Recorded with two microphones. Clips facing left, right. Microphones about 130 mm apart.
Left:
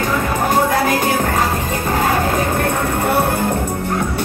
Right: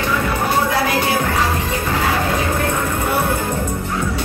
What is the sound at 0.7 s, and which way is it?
Music, 45° left (ahead or behind).